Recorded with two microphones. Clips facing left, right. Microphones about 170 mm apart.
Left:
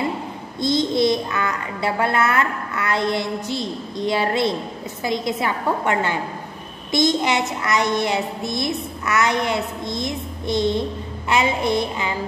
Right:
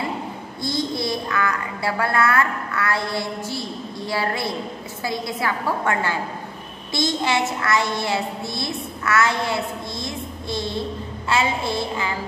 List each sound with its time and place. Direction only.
0.6 s a child's voice: 20° left (ahead or behind)